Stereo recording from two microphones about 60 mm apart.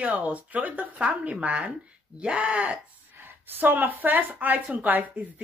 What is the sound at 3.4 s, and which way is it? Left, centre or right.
Speech, right.